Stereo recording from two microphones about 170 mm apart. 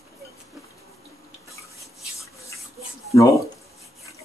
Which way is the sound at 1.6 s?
20° left (ahead or behind).